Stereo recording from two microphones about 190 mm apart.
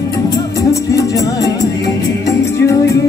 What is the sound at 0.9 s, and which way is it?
Music, 15° left (ahead or behind).